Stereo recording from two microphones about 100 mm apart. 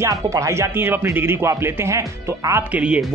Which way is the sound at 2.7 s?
10° right (ahead or behind).